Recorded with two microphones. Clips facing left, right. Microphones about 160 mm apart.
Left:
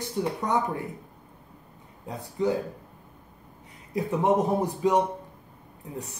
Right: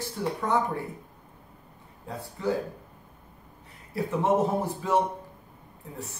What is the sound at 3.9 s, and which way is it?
Speech, 15° left (ahead or behind).